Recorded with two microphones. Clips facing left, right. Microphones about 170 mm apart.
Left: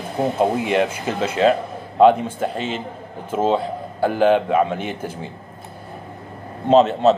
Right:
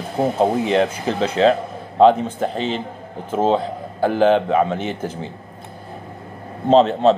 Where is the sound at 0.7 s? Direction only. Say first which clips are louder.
Right 2 dB; 10° left (ahead or behind).